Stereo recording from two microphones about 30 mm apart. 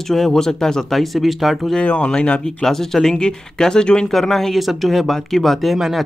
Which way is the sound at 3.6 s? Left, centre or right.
Left.